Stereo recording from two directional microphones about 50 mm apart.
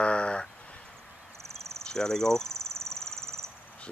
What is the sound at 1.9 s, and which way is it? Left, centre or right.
Cricket, centre.